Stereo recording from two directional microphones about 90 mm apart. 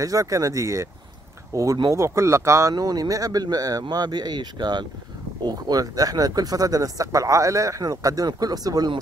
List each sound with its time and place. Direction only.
0.0 s speech: 35° right (ahead or behind)
2.7 s speech: 45° right (ahead or behind)